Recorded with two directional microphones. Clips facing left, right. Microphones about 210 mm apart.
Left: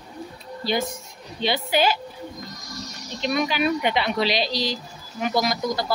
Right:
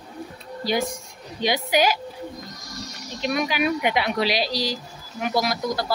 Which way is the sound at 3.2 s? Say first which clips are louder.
Left 1 dB; 10° right (ahead or behind).